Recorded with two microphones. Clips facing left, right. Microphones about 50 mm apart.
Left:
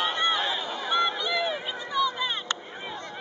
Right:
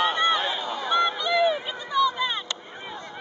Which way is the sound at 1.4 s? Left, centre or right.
Centre.